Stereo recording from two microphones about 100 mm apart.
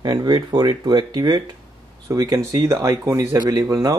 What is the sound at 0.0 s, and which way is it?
Speech, 45° right (ahead or behind).